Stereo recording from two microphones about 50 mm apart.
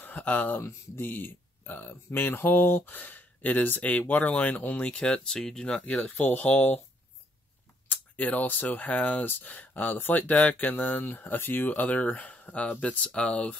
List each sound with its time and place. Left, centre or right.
0.0 s speech: left
1.0 s speech: left
4.9 s speech: centre
5.7 s speech: left
7.9 s speech: left
11.1 s speech: left